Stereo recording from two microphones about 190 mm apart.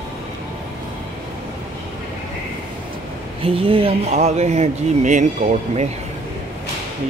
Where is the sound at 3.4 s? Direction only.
30° right (ahead or behind).